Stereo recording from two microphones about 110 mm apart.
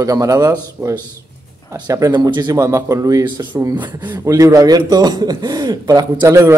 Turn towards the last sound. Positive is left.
turn(degrees=-30)  # may be behind; listen again after turning